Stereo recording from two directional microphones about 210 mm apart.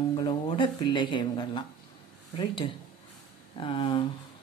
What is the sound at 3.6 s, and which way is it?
Speech, 25° left (ahead or behind).